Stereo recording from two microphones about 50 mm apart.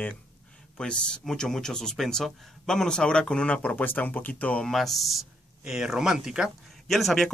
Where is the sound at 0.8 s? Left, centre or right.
Centre.